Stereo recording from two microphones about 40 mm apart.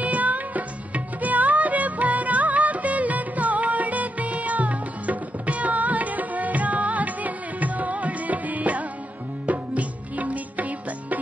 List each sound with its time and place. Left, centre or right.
0.0 s music: right